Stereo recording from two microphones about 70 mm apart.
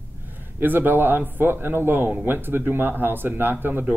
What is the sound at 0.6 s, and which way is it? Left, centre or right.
A man's voice, right.